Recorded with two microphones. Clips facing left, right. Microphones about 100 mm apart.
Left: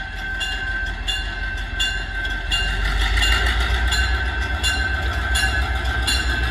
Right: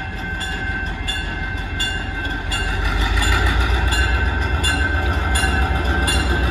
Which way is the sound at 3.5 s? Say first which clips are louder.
Right 3 dB; 30° right (ahead or behind).